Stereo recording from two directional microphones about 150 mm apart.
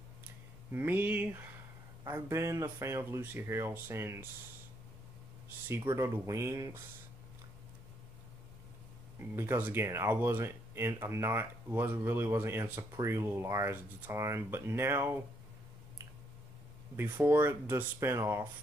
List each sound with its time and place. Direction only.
0.7 s speech: 15° right (ahead or behind)
5.7 s speech: 15° right (ahead or behind)
9.3 s speech: 15° right (ahead or behind)
16.9 s speech: 15° right (ahead or behind)